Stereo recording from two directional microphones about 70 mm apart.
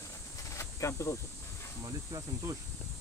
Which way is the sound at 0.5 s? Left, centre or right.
Left.